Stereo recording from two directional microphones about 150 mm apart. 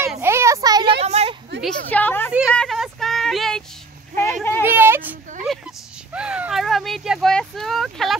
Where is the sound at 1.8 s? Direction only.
10° left (ahead or behind).